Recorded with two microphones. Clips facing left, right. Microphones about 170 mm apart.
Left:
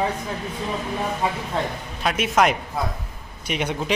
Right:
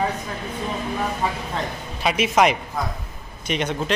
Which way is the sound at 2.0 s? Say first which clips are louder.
Right 1 dB; centre (ahead or behind).